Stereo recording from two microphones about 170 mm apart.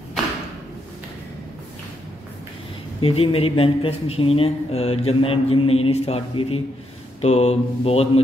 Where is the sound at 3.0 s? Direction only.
35° left (ahead or behind).